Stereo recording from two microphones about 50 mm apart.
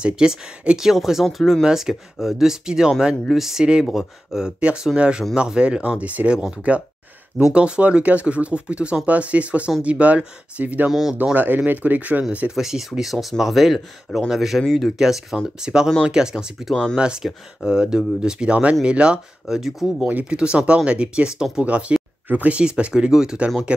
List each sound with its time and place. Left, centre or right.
0.0 s speech: centre
1.2 s speech: centre
1.6 s speech: centre; by 10.9 s right
10.9 s speech: centre
11.3 s speech: right
12.5 s speech: centre
15.0 s speech: centre
19.4 s speech: centre
20.1 s speech: right
20.3 s speech: right